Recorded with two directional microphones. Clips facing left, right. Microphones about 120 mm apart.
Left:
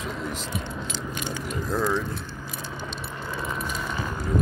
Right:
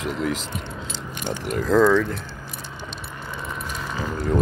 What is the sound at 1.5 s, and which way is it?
Speech, 90° right.